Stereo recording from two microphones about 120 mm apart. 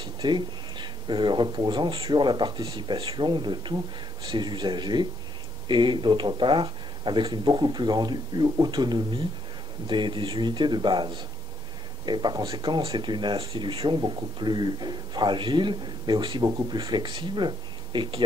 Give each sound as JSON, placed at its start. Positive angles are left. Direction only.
{"t": 0.0, "sound": "speech", "side_deg": -40}